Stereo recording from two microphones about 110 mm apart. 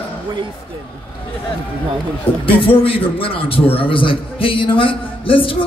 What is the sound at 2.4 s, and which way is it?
A man's voice, 55° left (ahead or behind).